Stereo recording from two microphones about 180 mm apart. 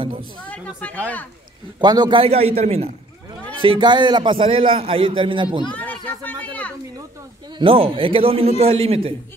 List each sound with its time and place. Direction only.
0.5 s speech: 5° left (ahead or behind)
1.8 s a man's voice: 25° right (ahead or behind)
5.7 s speech: 10° left (ahead or behind)
7.5 s a man's voice: 30° right (ahead or behind)